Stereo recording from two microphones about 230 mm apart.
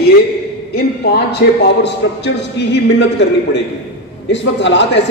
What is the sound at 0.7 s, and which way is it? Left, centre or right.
Speech, left.